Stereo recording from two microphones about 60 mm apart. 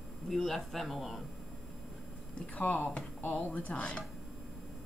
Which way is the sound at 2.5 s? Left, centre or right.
Left.